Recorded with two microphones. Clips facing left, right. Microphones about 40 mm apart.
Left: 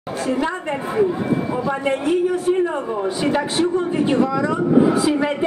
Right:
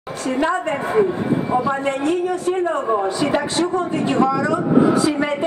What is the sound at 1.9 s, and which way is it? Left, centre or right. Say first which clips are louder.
A man's voice: left 1 dB; centre.